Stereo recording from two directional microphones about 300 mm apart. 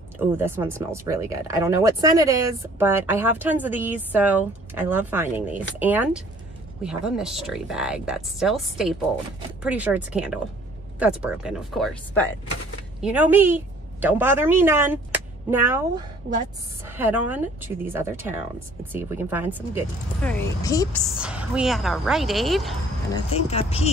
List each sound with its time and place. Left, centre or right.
0.4 s a woman's voice: centre
20.2 s a woman's voice: centre
21.0 s speech: centre
23.1 s speech: centre